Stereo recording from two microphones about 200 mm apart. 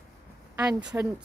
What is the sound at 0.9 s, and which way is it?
Speech, 10° right (ahead or behind).